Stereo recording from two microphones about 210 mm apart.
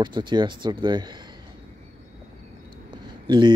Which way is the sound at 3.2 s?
20° right (ahead or behind).